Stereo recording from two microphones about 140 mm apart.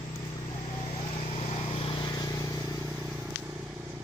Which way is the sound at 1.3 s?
50° left (ahead or behind).